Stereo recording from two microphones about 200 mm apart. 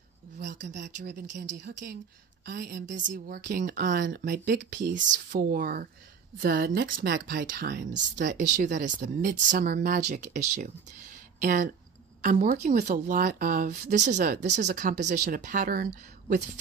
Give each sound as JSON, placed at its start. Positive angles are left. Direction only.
{"t": 1.1, "sound": "a woman's voice", "side_deg": -40}
{"t": 4.1, "sound": "speech", "side_deg": -60}
{"t": 4.9, "sound": "a woman's voice", "side_deg": -40}
{"t": 7.1, "sound": "a woman's voice", "side_deg": -45}
{"t": 8.3, "sound": "speech", "side_deg": -40}